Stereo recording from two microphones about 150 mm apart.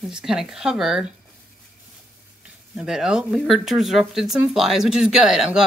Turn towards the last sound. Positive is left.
turn(degrees=-5)  # may be behind; listen again after turning